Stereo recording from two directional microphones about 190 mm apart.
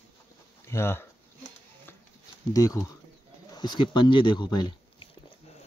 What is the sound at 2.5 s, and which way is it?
Speech, 20° left (ahead or behind).